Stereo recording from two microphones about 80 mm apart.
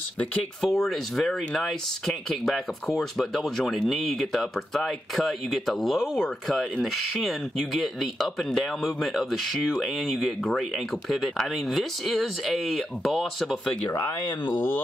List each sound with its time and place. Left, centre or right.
0.6 s speech: centre
13.8 s speech: left
14.5 s speech: left